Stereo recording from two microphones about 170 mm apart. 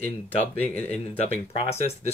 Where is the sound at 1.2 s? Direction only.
40° left (ahead or behind).